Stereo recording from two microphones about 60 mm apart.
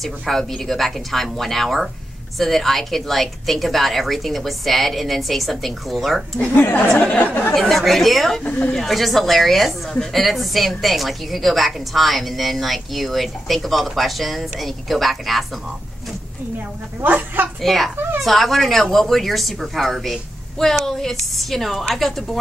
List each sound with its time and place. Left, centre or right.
0.0 s a woman's voice: centre
6.5 s speech: left
7.5 s a woman's voice: centre
8.5 s speech: left
8.7 s a woman's voice: centre
17.0 s speech: right
17.6 s a woman's voice: centre